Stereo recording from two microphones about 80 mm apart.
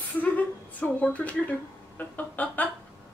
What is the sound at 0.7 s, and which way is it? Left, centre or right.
A woman's voice, centre.